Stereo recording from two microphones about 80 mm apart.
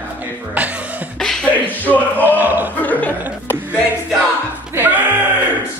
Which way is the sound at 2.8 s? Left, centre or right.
Centre.